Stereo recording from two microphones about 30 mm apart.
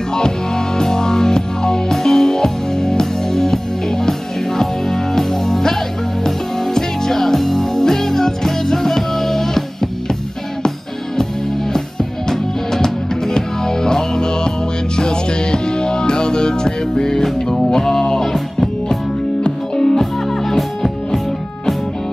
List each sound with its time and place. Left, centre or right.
0.1 s music: left
11.7 s music: centre
17.2 s music: centre
19.4 s music: left
20.0 s music: centre